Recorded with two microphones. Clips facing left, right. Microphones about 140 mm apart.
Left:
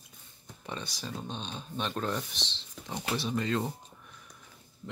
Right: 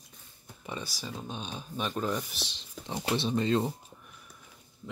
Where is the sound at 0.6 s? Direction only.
5° right (ahead or behind).